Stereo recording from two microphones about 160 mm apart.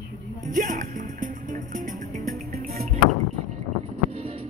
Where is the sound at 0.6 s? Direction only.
55° right (ahead or behind).